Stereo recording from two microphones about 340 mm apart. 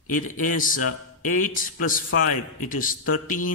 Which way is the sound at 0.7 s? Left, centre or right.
Left.